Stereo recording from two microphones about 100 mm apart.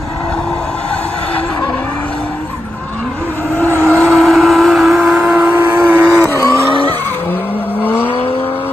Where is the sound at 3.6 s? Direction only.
25° right (ahead or behind).